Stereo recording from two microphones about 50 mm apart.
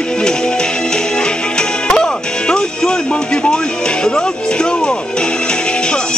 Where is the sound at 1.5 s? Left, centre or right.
Centre.